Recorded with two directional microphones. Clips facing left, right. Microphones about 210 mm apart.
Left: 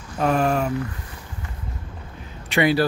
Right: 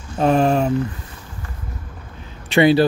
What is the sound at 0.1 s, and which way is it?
Speech, 25° right (ahead or behind).